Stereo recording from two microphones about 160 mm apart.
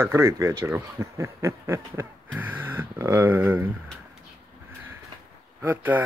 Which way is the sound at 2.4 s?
10° right (ahead or behind).